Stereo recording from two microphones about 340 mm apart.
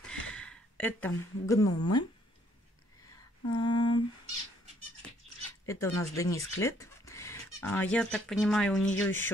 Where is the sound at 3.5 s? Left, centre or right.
Centre.